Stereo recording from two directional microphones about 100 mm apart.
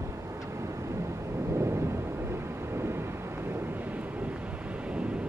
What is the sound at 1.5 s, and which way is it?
Thunder, 25° right (ahead or behind).